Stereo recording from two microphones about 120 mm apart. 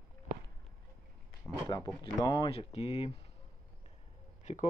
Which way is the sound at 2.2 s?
40° left (ahead or behind).